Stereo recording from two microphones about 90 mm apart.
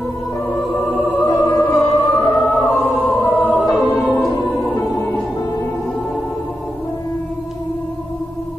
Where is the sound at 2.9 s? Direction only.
20° left (ahead or behind).